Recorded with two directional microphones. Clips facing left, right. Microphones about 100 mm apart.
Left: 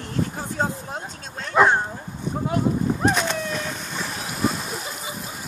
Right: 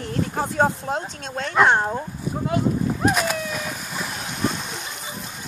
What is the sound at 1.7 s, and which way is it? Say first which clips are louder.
Speech: right 2 dB; 65° right (ahead or behind).